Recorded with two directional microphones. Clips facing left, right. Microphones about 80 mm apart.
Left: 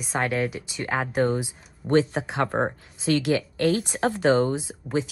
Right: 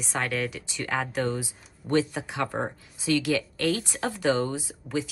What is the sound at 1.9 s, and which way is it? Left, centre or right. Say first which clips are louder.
Speech: left 4 dB; left.